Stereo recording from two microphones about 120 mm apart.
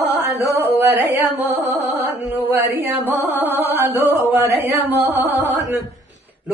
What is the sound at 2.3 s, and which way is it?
Chant, 15° right (ahead or behind).